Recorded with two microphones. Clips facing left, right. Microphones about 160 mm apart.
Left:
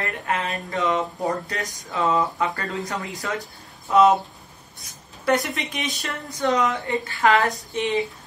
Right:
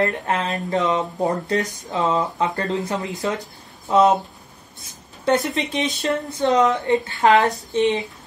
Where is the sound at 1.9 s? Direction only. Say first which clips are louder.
Right 1 dB; 20° right (ahead or behind).